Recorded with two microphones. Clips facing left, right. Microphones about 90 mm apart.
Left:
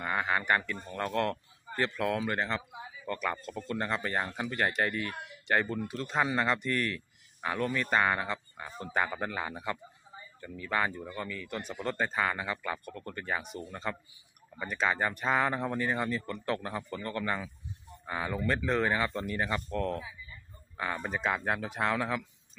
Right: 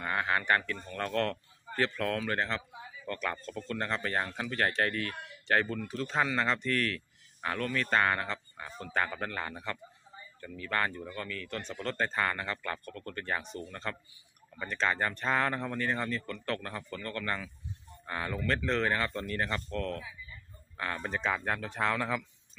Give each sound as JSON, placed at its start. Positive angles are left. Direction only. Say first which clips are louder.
{"t": 0.0, "sound": "a sound", "louder": "even", "side_deg": 10}
{"t": 0.9, "sound": "speech", "louder": "left 1 dB", "side_deg": 10}
{"t": 20.7, "sound": "speech", "louder": "left 1 dB", "side_deg": 10}